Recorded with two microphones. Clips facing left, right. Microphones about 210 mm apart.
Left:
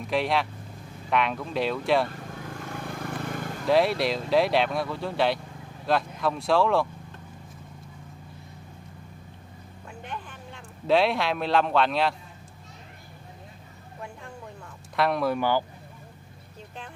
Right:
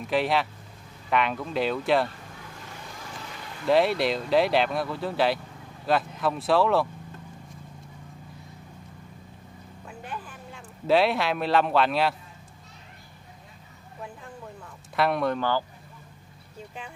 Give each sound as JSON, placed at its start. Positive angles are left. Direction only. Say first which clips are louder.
{"t": 0.0, "sound": "speech", "louder": "right 1 dB", "side_deg": 0}
{"t": 2.7, "sound": "vehicle", "louder": "left 9 dB", "side_deg": 60}
{"t": 3.6, "sound": "speech", "louder": "right 1 dB", "side_deg": 0}
{"t": 9.8, "sound": "a sound", "louder": "even", "side_deg": -5}
{"t": 15.0, "sound": "speech", "louder": "even", "side_deg": 0}
{"t": 15.3, "sound": "speech", "louder": "left 2 dB", "side_deg": 15}